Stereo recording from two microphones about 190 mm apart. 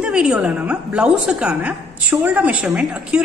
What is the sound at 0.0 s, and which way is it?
A woman's voice, 5° right (ahead or behind).